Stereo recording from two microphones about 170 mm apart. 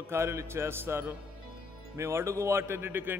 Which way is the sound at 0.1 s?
15° right (ahead or behind).